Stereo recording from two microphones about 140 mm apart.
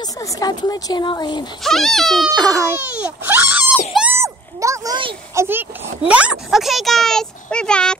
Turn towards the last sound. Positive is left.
turn(degrees=5)  # may be behind; listen again after turning